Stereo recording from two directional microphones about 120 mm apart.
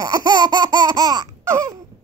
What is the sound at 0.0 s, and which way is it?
Laughter, 30° right (ahead or behind).